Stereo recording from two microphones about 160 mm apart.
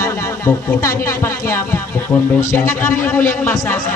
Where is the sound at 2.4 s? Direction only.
15° left (ahead or behind).